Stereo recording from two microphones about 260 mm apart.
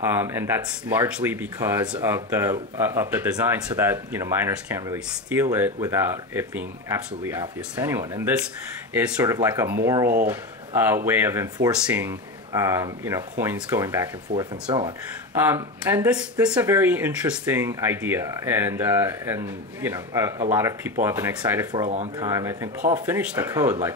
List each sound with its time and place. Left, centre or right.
0.0 s speech: centre
15.3 s speech: centre
21.8 s speech: right
22.2 s speech: centre